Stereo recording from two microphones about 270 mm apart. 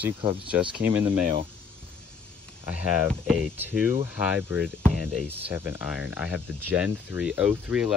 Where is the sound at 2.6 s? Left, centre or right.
Centre.